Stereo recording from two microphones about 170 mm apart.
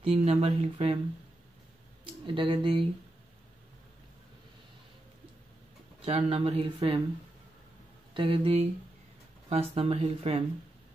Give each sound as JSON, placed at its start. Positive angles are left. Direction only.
{"t": 0.0, "sound": "speech", "side_deg": -40}
{"t": 2.2, "sound": "speech", "side_deg": -30}
{"t": 6.0, "sound": "speech", "side_deg": -40}
{"t": 8.1, "sound": "speech", "side_deg": -30}